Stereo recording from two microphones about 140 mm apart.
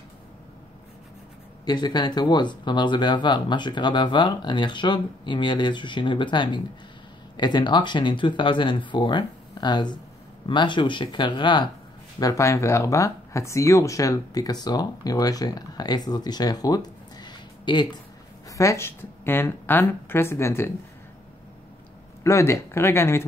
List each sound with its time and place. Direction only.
1.7 s speech: 30° left (ahead or behind)
12.2 s speech: 25° left (ahead or behind)
18.5 s speech: 20° left (ahead or behind)
22.2 s speech: 20° left (ahead or behind)